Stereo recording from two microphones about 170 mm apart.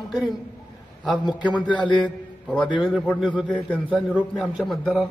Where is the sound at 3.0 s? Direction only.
10° left (ahead or behind).